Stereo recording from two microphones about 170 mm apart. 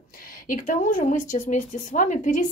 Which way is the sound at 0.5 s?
50° left (ahead or behind).